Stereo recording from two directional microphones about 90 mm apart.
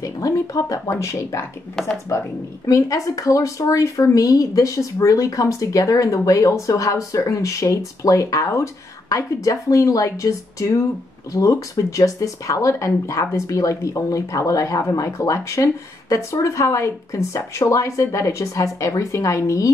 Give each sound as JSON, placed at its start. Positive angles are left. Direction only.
{"t": 0.0, "sound": "speech", "side_deg": 40}